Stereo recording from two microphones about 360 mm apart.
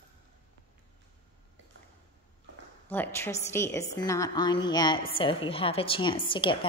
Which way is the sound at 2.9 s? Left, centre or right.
Centre.